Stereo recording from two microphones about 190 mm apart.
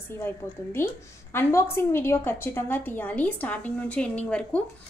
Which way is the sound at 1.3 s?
15° left (ahead or behind).